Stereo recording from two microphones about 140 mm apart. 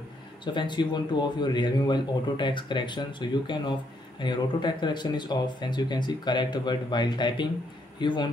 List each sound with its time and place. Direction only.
0.5 s speech: 35° left (ahead or behind)